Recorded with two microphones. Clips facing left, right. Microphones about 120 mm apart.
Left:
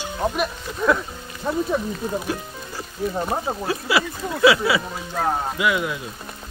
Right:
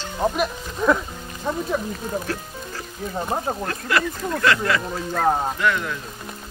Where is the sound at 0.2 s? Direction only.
Centre (ahead or behind).